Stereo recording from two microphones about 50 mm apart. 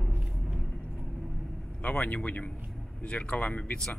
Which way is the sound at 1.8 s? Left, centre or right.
Left.